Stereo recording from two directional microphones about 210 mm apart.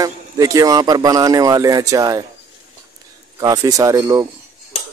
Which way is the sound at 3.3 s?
15° right (ahead or behind).